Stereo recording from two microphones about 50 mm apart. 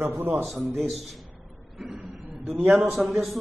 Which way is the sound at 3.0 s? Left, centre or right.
Centre.